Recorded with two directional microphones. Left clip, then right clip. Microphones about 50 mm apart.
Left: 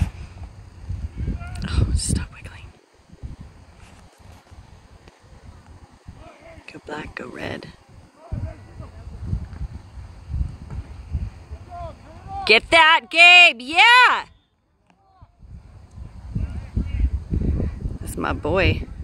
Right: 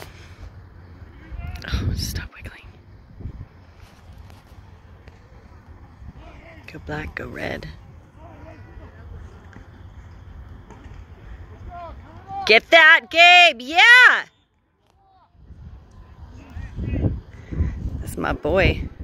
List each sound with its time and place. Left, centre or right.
1.4 s whispering: centre
6.2 s a sound: centre
6.6 s speech: centre
11.7 s boat: centre
12.6 s speech: left
18.0 s speech: centre